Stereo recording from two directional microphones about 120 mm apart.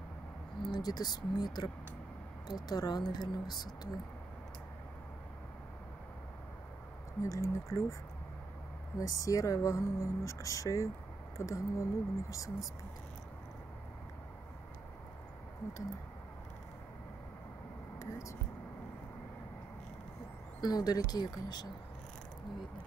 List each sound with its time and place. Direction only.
0.7 s speech: 35° left (ahead or behind)
7.2 s speech: 25° left (ahead or behind)
8.9 s speech: 30° left (ahead or behind)
20.6 s speech: 35° left (ahead or behind)